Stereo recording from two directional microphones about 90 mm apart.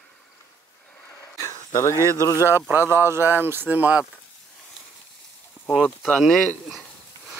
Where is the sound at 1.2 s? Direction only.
40° left (ahead or behind).